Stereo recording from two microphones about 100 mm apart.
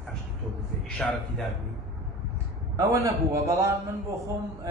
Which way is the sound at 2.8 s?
30° right (ahead or behind).